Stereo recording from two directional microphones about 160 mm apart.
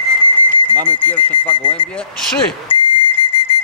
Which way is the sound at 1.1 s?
10° left (ahead or behind).